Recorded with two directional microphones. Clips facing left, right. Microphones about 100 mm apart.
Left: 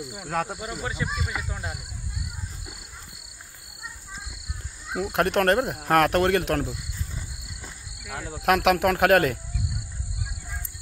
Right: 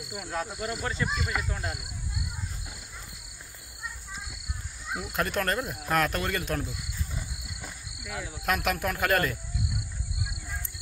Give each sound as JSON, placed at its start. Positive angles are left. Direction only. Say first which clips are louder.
{"t": 0.6, "sound": "speech", "louder": "even", "side_deg": 10}
{"t": 4.9, "sound": "speech", "louder": "left 7 dB", "side_deg": 65}
{"t": 6.7, "sound": "cricket", "louder": "left 1 dB", "side_deg": 0}
{"t": 8.4, "sound": "speech", "louder": "left 9 dB", "side_deg": 70}